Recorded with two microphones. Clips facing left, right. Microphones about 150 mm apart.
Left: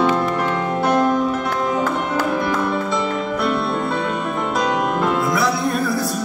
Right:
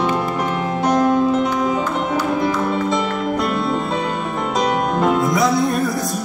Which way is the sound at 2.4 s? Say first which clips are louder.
Right 2 dB; 20° right (ahead or behind).